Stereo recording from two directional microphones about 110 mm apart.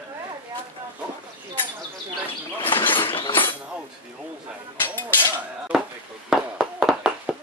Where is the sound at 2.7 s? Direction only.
50° left (ahead or behind).